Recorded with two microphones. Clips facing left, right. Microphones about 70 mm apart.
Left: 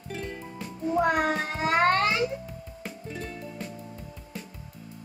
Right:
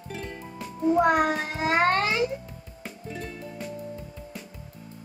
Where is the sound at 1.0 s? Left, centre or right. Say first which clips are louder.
Right 1 dB; right.